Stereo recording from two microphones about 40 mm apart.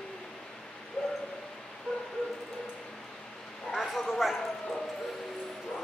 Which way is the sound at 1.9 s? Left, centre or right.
Centre.